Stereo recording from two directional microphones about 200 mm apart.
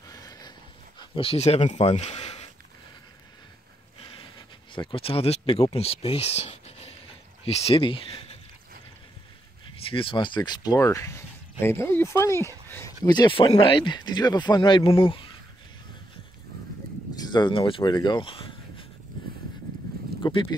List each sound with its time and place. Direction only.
0.1 s dog: 20° left (ahead or behind)
0.9 s speech: 25° left (ahead or behind)
4.0 s a sound: 25° left (ahead or behind)
4.7 s speech: 30° left (ahead or behind)
9.8 s speech: 25° left (ahead or behind)
17.2 s speech: 20° left (ahead or behind)
20.2 s a sound: 25° left (ahead or behind)